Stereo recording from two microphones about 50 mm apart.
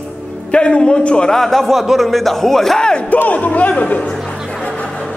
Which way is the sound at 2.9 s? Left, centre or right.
Left.